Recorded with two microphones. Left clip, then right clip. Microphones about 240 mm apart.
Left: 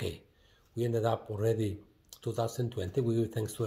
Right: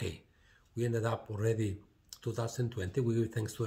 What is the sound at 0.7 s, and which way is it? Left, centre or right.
Speech, centre.